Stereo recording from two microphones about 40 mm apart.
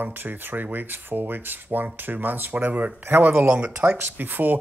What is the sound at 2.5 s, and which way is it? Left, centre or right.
Speech, right.